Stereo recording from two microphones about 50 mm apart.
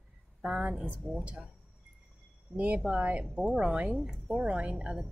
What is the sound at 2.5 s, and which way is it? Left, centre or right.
A woman's voice, right.